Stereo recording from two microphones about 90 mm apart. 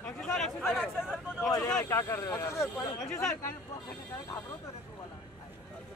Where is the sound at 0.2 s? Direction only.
5° left (ahead or behind).